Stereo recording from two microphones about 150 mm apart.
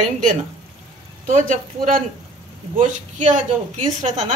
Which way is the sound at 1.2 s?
60° right (ahead or behind).